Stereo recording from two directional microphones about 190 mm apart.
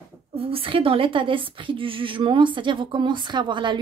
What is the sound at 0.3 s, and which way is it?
A woman's voice, 30° right (ahead or behind).